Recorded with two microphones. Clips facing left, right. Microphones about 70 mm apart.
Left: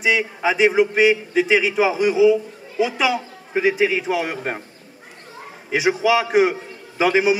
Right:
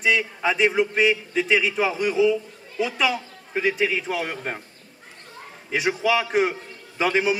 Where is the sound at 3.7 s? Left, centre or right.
Centre.